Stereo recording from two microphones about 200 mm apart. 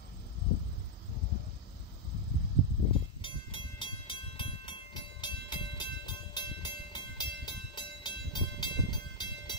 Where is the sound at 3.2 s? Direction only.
25° left (ahead or behind).